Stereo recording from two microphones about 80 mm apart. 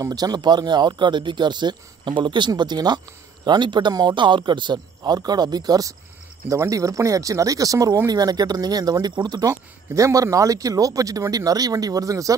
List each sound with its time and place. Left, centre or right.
0.0 s speech: right